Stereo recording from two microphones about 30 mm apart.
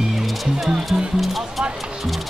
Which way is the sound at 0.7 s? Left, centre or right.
Right.